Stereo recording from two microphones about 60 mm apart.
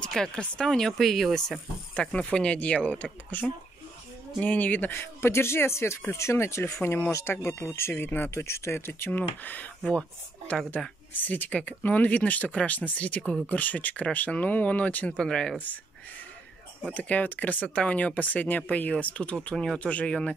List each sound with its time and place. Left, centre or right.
0.3 s speech: centre
2.0 s speech: centre; by 9.1 s left
9.1 s speech: left
11.1 s speech: left; by 15.5 s centre
16.9 s speech: left
19.5 s speech: centre
19.9 s speech: centre